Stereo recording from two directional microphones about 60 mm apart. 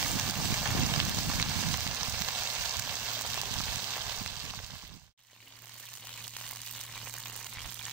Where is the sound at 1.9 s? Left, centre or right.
Right.